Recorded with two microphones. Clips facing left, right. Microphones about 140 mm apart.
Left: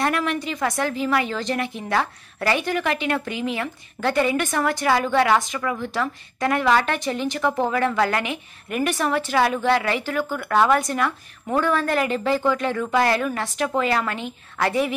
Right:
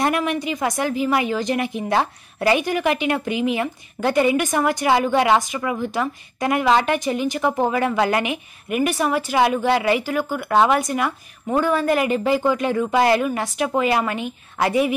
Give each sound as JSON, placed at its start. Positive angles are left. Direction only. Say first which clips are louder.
{"t": 0.0, "sound": "speech", "louder": "right 2 dB", "side_deg": -15}